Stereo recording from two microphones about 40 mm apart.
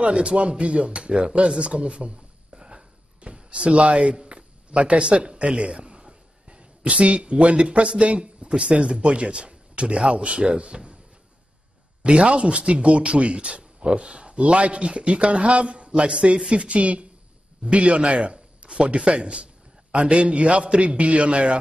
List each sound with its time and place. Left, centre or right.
0.0 s speech: right
1.5 s a sound: right
3.4 s speech: right
12.0 s a man's voice: right